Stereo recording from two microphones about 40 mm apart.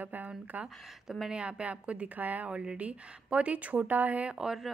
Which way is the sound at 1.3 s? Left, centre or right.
Right.